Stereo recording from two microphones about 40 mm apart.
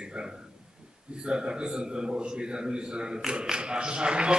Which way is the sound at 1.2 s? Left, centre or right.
Right.